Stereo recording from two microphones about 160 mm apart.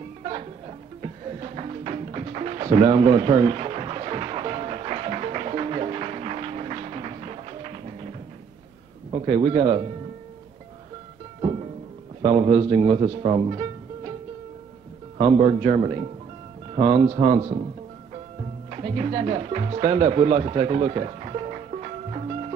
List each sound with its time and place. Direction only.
0.3 s music: 35° right (ahead or behind)
9.2 s a man's voice: 40° right (ahead or behind)
12.2 s speech: 40° right (ahead or behind)
15.1 s a man's voice: 35° right (ahead or behind)
18.7 s speech: 40° right (ahead or behind)